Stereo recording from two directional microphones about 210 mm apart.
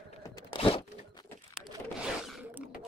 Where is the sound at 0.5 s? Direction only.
25° left (ahead or behind).